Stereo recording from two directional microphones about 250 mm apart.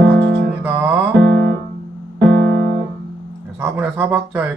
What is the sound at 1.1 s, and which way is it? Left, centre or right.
Music, right.